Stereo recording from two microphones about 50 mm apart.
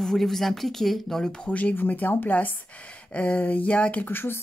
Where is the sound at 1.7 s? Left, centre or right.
Left.